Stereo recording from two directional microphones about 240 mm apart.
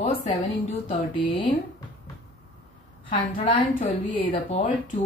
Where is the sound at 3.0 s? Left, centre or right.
Left.